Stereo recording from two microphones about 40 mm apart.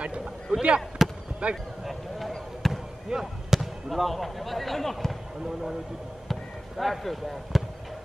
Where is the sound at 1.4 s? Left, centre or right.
Right.